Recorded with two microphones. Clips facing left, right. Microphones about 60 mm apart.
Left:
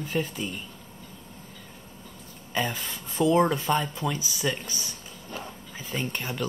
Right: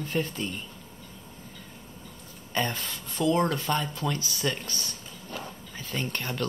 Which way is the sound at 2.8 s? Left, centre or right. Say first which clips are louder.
Left 2 dB; left.